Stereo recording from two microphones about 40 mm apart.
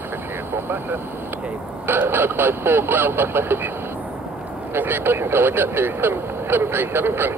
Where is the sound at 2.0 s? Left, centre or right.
Right.